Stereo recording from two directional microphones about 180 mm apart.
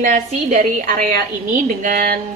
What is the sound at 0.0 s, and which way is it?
A woman's voice, 45° right (ahead or behind).